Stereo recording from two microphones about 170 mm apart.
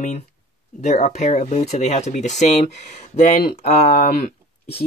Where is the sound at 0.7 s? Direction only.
45° left (ahead or behind).